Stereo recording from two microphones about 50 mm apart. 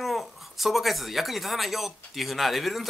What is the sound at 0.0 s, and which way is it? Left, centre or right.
Speech, centre.